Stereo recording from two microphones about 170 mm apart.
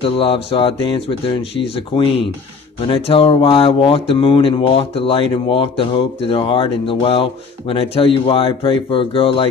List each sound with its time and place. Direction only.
0.0 s speech: 35° left (ahead or behind)